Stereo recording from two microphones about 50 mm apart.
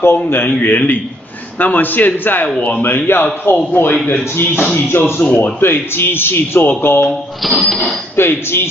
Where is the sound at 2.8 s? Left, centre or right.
Left.